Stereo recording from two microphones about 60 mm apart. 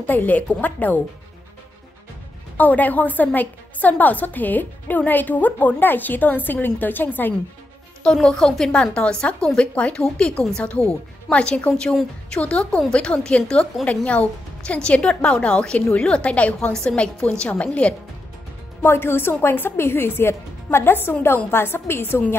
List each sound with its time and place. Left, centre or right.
0.0 s a woman's voice: left
2.5 s a woman's voice: left
8.0 s a woman's voice: centre
9.8 s a woman's voice: left
11.2 s a woman's voice: centre
18.9 s a woman's voice: left